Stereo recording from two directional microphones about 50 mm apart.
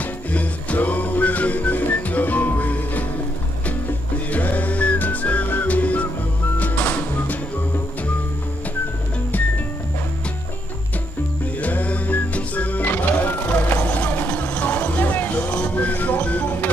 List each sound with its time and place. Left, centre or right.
0.0 s music: left
4.3 s music: left
11.6 s music: left
14.6 s vehicle: left
15.5 s music: left